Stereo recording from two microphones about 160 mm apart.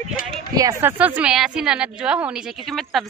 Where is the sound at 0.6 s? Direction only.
20° right (ahead or behind).